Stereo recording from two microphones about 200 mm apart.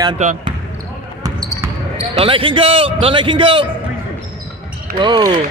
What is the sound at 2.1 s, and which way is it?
A man's voice, 25° right (ahead or behind).